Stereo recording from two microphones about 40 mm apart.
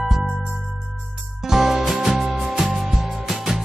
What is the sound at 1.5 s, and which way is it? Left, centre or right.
Music, centre.